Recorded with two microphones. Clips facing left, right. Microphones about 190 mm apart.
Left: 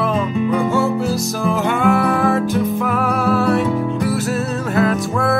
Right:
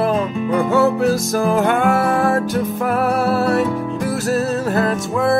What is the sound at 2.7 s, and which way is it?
Music, 45° right (ahead or behind).